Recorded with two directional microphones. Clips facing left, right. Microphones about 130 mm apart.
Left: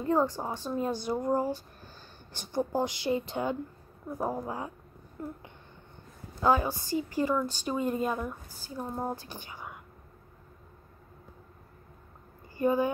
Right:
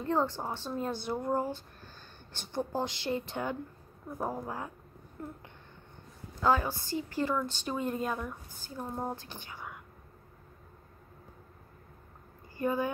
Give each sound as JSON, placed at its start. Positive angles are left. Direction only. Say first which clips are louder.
{"t": 0.0, "sound": "a woman's voice", "louder": "left 3 dB", "side_deg": 10}
{"t": 1.3, "sound": "a sound", "louder": "left 3 dB", "side_deg": 10}
{"t": 2.5, "sound": "a woman's voice", "louder": "left 4 dB", "side_deg": 15}
{"t": 6.4, "sound": "a woman's voice", "louder": "left 2 dB", "side_deg": 15}
{"t": 12.5, "sound": "speech", "louder": "left 4 dB", "side_deg": 15}